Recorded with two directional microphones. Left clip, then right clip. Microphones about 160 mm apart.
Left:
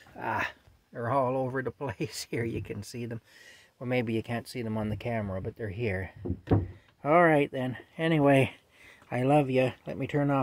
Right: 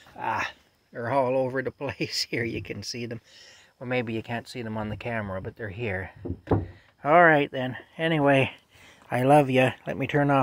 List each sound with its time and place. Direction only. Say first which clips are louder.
0.1 s a sound: right 3 dB; 35° left (ahead or behind)
0.9 s speech: right 4 dB; centre (ahead or behind)
3.8 s speech: right 1 dB; 35° left (ahead or behind)
7.0 s speech: right 4 dB; 15° left (ahead or behind)
9.1 s speech: right 6 dB; centre (ahead or behind)